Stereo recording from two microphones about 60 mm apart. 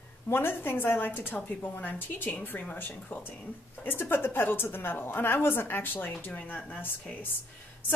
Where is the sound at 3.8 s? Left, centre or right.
Left.